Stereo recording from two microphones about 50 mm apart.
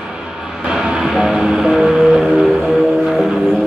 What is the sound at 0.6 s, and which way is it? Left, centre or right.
Music, centre.